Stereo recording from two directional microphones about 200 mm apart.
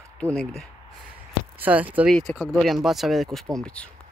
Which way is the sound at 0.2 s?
5° left (ahead or behind).